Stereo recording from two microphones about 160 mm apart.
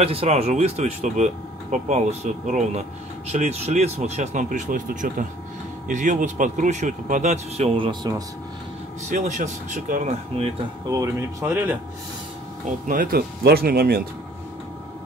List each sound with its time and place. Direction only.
0.0 s speech: 40° right (ahead or behind)
9.1 s speech: 50° right (ahead or behind)
10.3 s speech: 40° right (ahead or behind)
10.9 s speech: 20° right (ahead or behind)
12.8 s speech: 60° right (ahead or behind)